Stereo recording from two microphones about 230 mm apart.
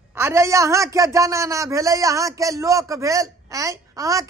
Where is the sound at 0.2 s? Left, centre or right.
Centre.